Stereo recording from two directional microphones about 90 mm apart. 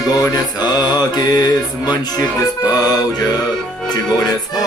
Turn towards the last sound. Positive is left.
turn(degrees=50)  # may be behind; listen again after turning